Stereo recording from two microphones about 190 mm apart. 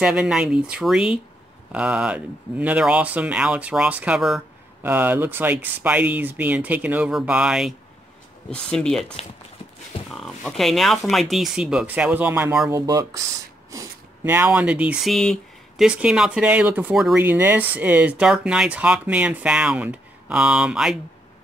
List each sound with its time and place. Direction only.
0.0 s speech: 5° right (ahead or behind)
9.9 s a sound: 30° left (ahead or behind)
10.5 s speech: centre (ahead or behind)
17.2 s speech: 10° right (ahead or behind)